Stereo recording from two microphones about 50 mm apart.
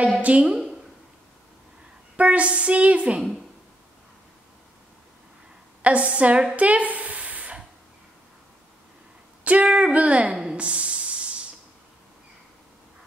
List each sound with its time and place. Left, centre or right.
0.2 s a woman's voice: right
2.1 s a woman's voice: right
5.8 s a woman's voice: right
6.5 s a sound: right
9.4 s a woman's voice: right
10.5 s a sound: right